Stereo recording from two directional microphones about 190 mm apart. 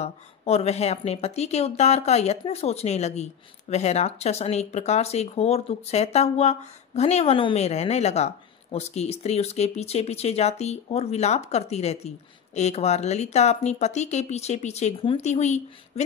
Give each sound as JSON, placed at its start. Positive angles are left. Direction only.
{"t": 0.0, "sound": "speech", "side_deg": 35}